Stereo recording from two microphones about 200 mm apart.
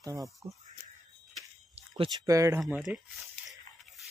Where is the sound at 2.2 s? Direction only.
15° right (ahead or behind).